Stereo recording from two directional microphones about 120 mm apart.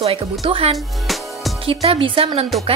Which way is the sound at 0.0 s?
55° right (ahead or behind).